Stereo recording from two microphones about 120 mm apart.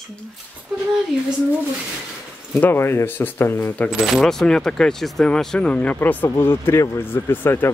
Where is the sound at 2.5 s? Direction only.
15° left (ahead or behind).